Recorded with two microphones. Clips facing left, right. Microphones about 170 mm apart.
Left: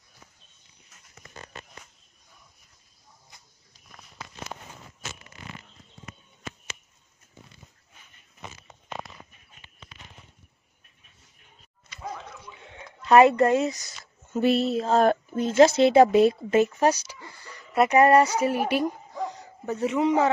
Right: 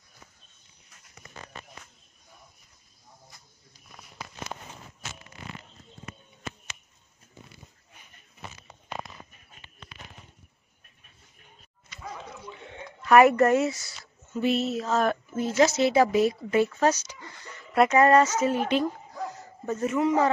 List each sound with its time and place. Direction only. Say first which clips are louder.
13.0 s a woman's voice: left 1 dB; 25° left (ahead or behind)
13.8 s a woman's voice: even; 40° left (ahead or behind)
16.6 s speech: left 1 dB; 15° left (ahead or behind)
19.1 s a sound: left 3 dB; centre (ahead or behind)
19.7 s a man's voice: left 1 dB; 15° left (ahead or behind)